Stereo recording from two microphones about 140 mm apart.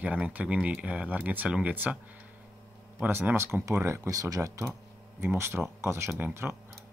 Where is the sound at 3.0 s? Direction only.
15° right (ahead or behind).